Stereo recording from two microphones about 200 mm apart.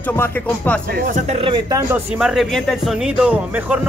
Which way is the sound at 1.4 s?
25° right (ahead or behind).